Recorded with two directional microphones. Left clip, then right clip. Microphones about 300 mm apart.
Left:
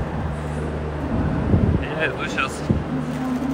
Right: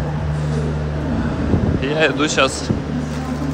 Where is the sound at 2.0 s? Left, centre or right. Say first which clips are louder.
Right 9 dB; centre.